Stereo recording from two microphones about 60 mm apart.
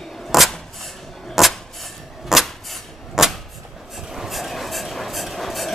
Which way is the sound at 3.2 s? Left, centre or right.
Centre.